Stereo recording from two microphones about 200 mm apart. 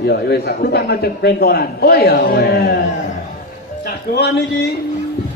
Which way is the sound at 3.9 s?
55° left (ahead or behind).